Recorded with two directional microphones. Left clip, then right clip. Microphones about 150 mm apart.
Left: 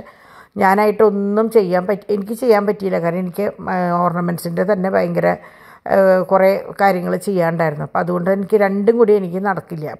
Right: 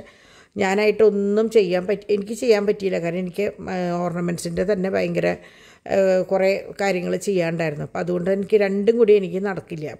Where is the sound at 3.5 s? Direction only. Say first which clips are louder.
Left 7 dB; 30° right (ahead or behind).